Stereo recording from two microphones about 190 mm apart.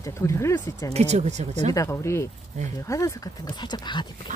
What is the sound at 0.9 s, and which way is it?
Speech, 35° right (ahead or behind).